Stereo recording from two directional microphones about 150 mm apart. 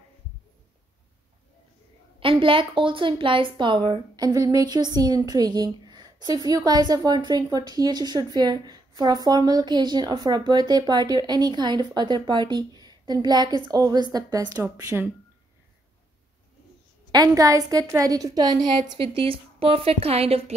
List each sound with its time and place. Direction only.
2.1 s a woman's voice: 35° right (ahead or behind); by 15.0 s 20° right (ahead or behind)
17.1 s a woman's voice: 25° right (ahead or behind); by 20.5 s 40° right (ahead or behind)